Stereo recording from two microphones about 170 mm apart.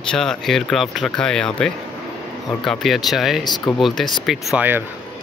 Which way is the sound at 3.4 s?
25° left (ahead or behind).